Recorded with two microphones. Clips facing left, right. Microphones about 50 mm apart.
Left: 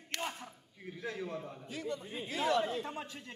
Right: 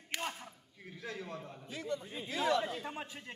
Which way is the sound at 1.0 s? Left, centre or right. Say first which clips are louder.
Left 3 dB; left.